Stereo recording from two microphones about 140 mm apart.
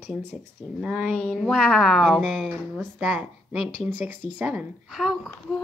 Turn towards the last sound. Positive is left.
turn(degrees=0)  # may be behind; listen again after turning